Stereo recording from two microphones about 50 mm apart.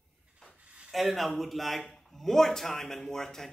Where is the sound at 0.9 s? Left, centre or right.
Centre.